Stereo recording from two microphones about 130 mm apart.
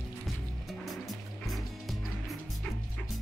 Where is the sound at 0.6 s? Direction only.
Centre (ahead or behind).